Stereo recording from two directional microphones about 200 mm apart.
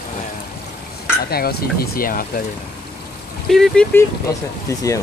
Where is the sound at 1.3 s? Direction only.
50° left (ahead or behind).